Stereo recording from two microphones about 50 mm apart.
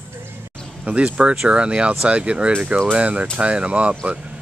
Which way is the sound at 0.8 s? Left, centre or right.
Right.